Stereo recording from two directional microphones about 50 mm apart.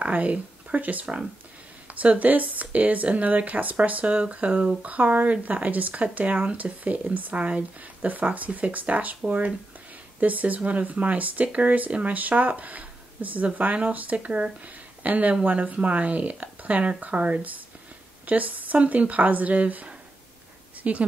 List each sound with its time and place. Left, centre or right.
0.0 s speech: right
10.2 s speech: right